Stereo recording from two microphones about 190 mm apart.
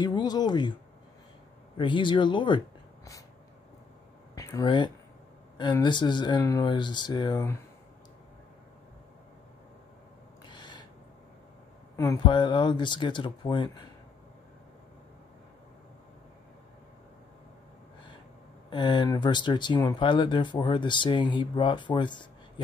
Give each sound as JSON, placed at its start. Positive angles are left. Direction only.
{"t": 0.0, "sound": "speech", "side_deg": 20}
{"t": 1.8, "sound": "speech", "side_deg": 25}
{"t": 4.4, "sound": "speech", "side_deg": 15}
{"t": 10.5, "sound": "a sound", "side_deg": 25}
{"t": 12.0, "sound": "speech", "side_deg": 20}
{"t": 18.7, "sound": "speech", "side_deg": 25}